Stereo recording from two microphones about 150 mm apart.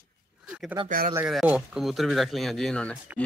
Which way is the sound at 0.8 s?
65° right (ahead or behind).